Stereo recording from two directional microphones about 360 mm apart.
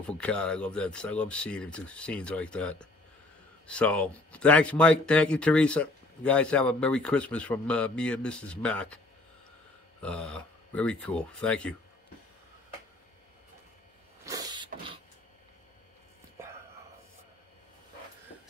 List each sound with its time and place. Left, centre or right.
0.0 s speech: centre
10.0 s speech: centre
14.2 s a sound: centre